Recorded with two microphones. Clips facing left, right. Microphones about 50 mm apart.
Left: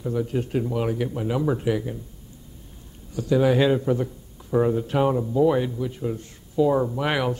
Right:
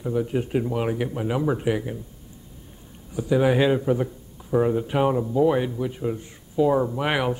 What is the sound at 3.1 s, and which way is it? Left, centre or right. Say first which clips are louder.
A man's voice: even; centre.